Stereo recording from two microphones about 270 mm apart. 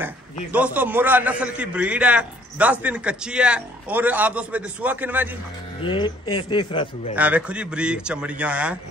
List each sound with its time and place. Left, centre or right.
0.5 s a man's voice: centre
5.8 s speech: centre
7.2 s a man's voice: centre